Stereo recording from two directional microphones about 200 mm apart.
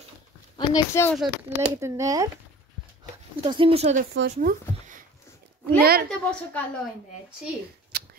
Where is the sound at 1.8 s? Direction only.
15° right (ahead or behind).